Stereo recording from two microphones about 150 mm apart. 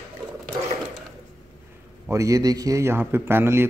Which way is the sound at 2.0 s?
20° right (ahead or behind).